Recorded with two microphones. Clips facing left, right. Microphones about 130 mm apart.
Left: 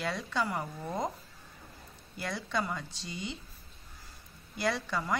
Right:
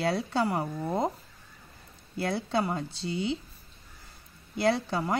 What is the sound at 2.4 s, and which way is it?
Speech, 30° right (ahead or behind).